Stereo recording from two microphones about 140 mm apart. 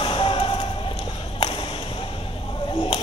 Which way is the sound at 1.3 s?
40° left (ahead or behind).